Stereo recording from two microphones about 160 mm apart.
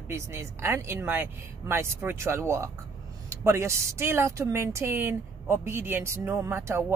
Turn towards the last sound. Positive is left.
turn(degrees=-15)  # may be behind; listen again after turning